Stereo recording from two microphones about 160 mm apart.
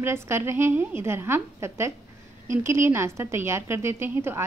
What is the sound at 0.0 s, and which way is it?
A woman's voice, 15° right (ahead or behind).